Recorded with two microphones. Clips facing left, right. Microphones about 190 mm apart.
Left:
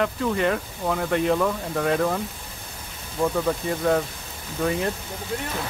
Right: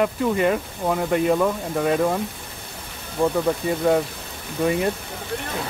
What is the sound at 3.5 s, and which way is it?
Speech, 10° right (ahead or behind).